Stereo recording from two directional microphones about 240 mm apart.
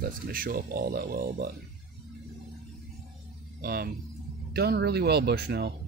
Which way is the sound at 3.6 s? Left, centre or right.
Right.